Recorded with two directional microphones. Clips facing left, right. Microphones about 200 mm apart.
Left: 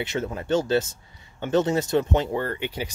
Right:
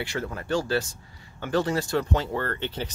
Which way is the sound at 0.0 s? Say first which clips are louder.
Left 3 dB; 20° left (ahead or behind).